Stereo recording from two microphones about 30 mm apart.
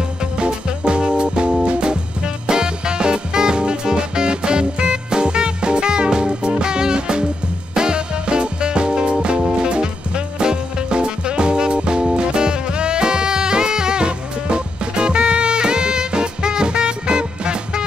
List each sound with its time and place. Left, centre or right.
0.4 s music: right